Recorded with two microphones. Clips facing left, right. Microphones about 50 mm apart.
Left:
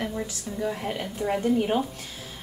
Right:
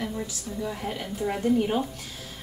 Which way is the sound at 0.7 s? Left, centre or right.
Centre.